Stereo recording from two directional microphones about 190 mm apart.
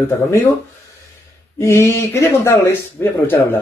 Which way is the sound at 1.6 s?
15° left (ahead or behind).